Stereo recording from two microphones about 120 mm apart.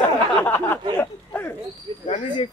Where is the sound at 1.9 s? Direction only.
45° right (ahead or behind).